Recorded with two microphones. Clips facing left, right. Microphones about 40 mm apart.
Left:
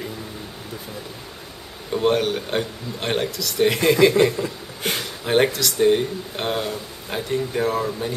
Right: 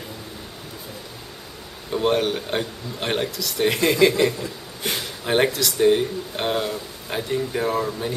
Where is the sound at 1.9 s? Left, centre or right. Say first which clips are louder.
Left 1 dB; centre.